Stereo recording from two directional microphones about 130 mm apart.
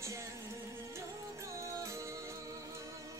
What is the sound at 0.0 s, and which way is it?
Music, 20° right (ahead or behind).